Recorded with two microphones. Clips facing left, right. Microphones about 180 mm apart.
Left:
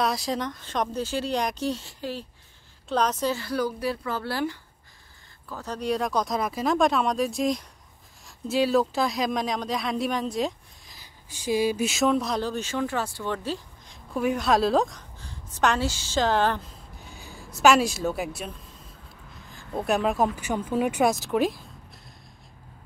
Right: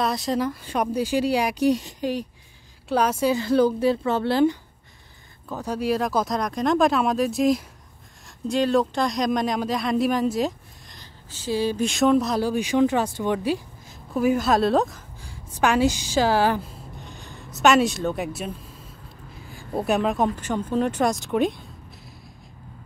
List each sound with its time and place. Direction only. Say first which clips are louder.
0.0 s speech: right 3 dB; centre (ahead or behind); by 4.6 s 25° right (ahead or behind)
5.5 s speech: right 4 dB; 10° right (ahead or behind)
11.2 s speech: even; 15° left (ahead or behind); by 16.6 s 10° right (ahead or behind)
17.0 s a sound: right 2 dB; 5° left (ahead or behind)
17.6 s speech: right 1 dB; centre (ahead or behind)
19.8 s speech: right 2 dB; centre (ahead or behind)